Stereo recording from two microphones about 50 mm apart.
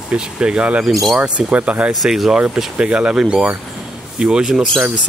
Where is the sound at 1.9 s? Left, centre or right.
Centre.